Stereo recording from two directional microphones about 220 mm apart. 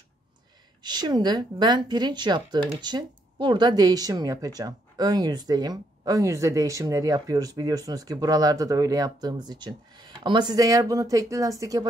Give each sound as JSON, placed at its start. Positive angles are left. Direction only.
{"t": 0.8, "sound": "speech", "side_deg": -20}